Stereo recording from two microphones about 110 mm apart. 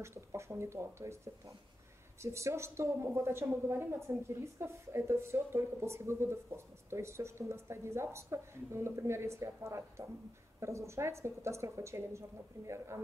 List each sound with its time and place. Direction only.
0.0 s a woman's voice: 25° right (ahead or behind)